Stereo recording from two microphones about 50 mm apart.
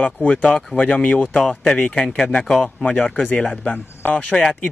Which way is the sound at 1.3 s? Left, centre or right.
Centre.